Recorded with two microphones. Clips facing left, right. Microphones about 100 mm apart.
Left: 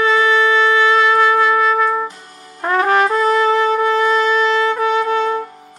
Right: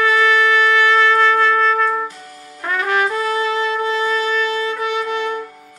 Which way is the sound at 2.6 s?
35° left (ahead or behind).